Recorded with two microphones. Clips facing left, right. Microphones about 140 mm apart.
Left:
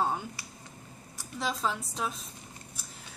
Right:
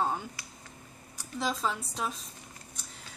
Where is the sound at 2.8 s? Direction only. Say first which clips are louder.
Even; 5° left (ahead or behind).